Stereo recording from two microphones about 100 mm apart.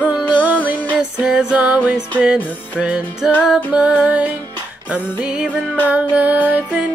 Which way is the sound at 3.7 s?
10° right (ahead or behind).